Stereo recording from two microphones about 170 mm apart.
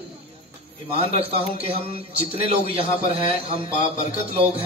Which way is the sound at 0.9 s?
35° right (ahead or behind).